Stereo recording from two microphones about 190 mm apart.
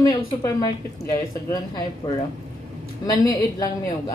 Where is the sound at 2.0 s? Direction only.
30° left (ahead or behind).